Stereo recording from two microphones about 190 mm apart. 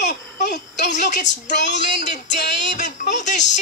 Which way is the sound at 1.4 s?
40° left (ahead or behind).